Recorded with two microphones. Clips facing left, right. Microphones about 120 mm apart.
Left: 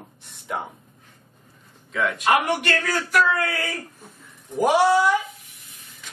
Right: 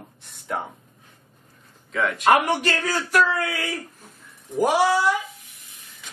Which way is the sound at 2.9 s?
25° right (ahead or behind).